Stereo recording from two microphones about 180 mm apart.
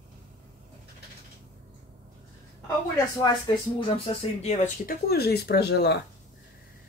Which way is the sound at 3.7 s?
30° left (ahead or behind).